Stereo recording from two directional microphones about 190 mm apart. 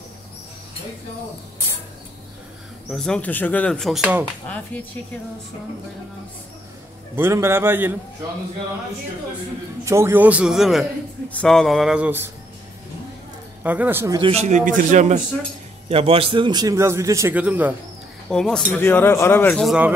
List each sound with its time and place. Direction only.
2.9 s a man's voice: centre (ahead or behind)
7.2 s a man's voice: 10° right (ahead or behind)
9.8 s a man's voice: 15° right (ahead or behind)
13.6 s speech: 10° right (ahead or behind)
14.1 s a man's voice: 30° right (ahead or behind); by 17.7 s 10° right (ahead or behind)
18.3 s a man's voice: 5° left (ahead or behind)
19.6 s a man's voice: 5° right (ahead or behind)